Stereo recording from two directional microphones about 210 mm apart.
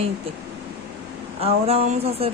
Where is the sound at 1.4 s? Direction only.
30° right (ahead or behind).